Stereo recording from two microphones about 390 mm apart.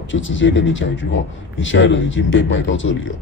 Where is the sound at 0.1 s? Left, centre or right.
Left.